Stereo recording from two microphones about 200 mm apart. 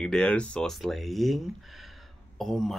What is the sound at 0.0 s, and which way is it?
Speech, 5° left (ahead or behind).